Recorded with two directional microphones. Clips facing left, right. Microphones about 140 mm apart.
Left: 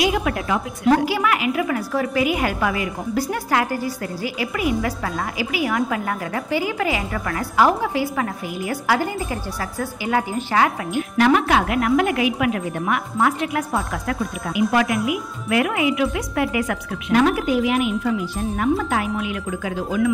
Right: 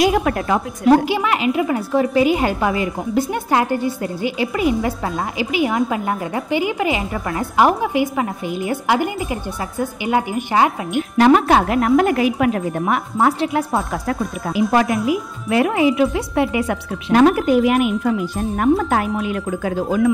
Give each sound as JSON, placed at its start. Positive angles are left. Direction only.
{"t": 0.0, "sound": "speech", "side_deg": -45}
{"t": 0.8, "sound": "a woman's voice", "side_deg": -20}
{"t": 17.1, "sound": "speech", "side_deg": -40}